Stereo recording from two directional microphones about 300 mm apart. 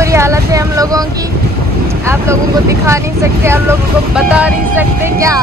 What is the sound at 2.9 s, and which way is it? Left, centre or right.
Speech, centre.